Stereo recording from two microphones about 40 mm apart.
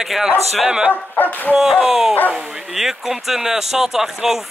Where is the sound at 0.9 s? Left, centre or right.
Left.